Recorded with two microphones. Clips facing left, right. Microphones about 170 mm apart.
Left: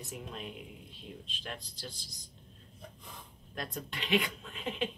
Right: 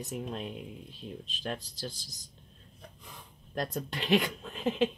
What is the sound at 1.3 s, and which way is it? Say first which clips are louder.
Speech: right 10 dB; 40° right (ahead or behind).